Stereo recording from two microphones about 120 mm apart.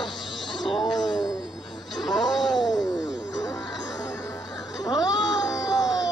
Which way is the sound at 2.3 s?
Centre (ahead or behind).